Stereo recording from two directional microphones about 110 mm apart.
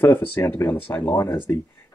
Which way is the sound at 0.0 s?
20° left (ahead or behind).